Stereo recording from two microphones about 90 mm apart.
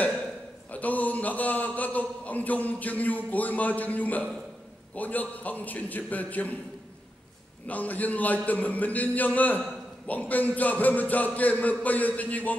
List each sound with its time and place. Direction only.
0.7 s a sound: 20° left (ahead or behind)
3.3 s a man's voice: 20° left (ahead or behind)
7.6 s a man's voice: 15° left (ahead or behind)